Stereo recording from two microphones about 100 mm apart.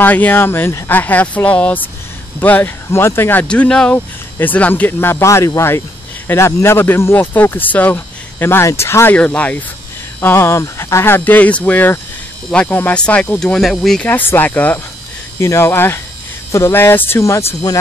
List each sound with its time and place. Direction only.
0.0 s speech: 15° left (ahead or behind)
3.4 s speech: 10° left (ahead or behind)
10.2 s speech: 25° left (ahead or behind); by 14.0 s 5° left (ahead or behind)
14.0 s speech: 20° left (ahead or behind)
15.3 s speech: 25° left (ahead or behind)